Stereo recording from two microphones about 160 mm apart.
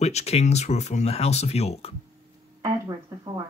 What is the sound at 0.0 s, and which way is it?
Speech, 45° left (ahead or behind).